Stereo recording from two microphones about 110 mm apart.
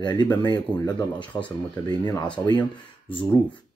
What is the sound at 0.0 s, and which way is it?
Speech, 40° left (ahead or behind).